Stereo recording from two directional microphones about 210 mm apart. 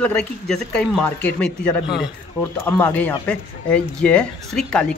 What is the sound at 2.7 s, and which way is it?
Speech, 10° left (ahead or behind).